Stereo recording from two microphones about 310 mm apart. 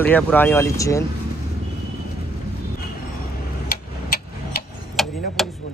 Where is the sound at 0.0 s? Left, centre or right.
Centre.